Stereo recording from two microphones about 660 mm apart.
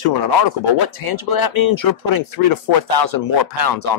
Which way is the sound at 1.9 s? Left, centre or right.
Left.